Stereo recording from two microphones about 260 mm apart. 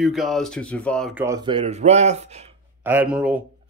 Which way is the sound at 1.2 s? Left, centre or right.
Centre.